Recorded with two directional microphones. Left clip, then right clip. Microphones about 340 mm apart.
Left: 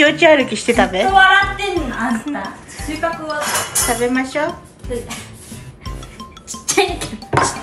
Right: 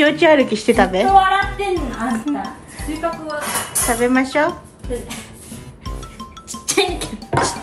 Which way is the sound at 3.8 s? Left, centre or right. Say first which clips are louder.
Right 3 dB; centre.